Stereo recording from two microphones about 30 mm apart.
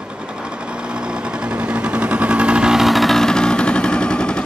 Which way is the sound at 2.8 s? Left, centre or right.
Centre.